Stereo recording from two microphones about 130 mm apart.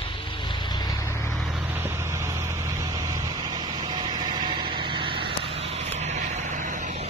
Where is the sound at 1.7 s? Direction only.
20° right (ahead or behind); by 7.1 s 75° right (ahead or behind).